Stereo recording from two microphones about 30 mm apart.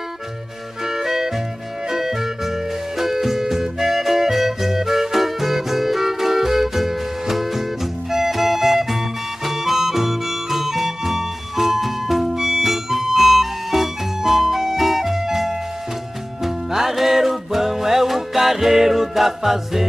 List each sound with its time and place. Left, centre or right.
0.8 s music: centre